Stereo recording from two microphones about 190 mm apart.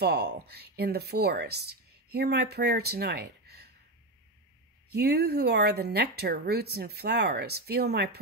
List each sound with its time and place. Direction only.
0.0 s speech: 60° right (ahead or behind)
4.9 s speech: 60° right (ahead or behind)